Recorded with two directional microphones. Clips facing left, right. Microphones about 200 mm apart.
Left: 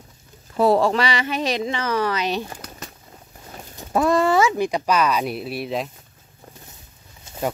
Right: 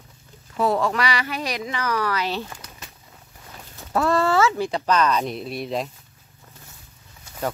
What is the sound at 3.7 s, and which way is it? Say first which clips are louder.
Speech: left 2 dB; 15° left (ahead or behind).